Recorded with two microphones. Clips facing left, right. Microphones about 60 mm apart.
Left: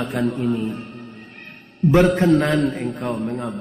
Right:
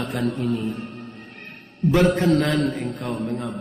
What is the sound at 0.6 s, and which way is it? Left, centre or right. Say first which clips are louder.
Music: left 1 dB; centre.